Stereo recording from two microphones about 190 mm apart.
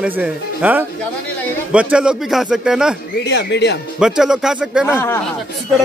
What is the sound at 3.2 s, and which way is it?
Speech, 65° left (ahead or behind).